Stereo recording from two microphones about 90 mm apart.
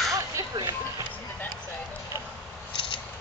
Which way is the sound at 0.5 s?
50° right (ahead or behind).